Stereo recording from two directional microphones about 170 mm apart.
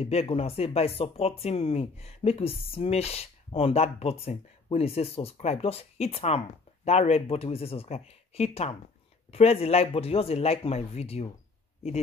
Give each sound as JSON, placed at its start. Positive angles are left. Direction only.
{"t": 0.0, "sound": "speech", "side_deg": 35}